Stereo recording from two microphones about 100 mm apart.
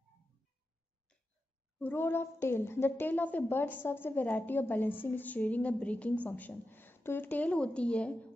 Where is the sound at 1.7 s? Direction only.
20° left (ahead or behind).